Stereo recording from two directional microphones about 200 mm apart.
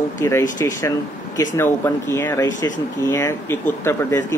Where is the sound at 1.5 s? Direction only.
10° left (ahead or behind).